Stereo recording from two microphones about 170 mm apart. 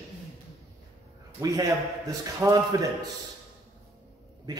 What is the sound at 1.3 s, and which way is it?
A man's voice, 20° right (ahead or behind).